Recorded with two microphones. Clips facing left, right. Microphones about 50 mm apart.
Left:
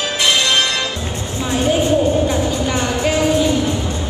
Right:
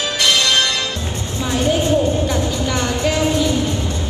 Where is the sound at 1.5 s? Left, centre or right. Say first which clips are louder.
Left 1 dB; left.